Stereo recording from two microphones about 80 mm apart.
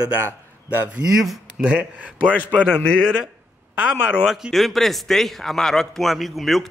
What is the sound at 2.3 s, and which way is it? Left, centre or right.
Speech, left.